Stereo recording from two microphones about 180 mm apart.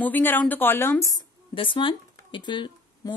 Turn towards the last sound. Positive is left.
turn(degrees=25)  # may be behind; listen again after turning